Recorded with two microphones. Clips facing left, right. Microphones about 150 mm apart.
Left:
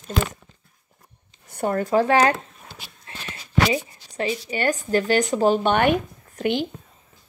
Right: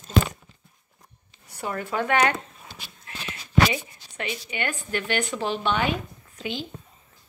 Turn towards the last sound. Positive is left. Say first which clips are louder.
# left 9 dB
turn(degrees=60)  # may be behind; listen again after turning